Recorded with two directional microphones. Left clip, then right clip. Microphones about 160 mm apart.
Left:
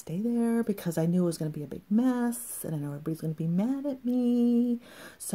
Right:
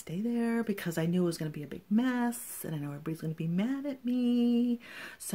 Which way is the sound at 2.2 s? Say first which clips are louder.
Left 2 dB; 30° right (ahead or behind).